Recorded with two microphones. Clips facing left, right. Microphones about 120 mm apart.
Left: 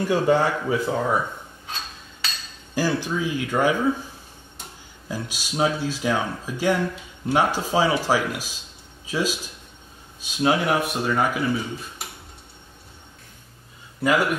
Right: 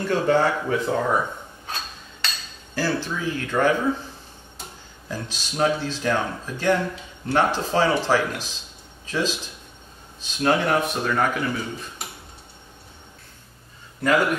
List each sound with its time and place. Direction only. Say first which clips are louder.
0.0 s speech: even; 10° left (ahead or behind)
2.2 s cutlery: right 1 dB; centre (ahead or behind)
2.7 s speech: left 2 dB; 15° left (ahead or behind)